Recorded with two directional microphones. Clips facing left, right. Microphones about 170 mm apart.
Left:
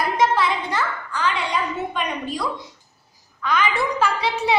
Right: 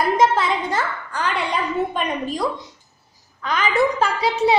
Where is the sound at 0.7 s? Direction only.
30° right (ahead or behind).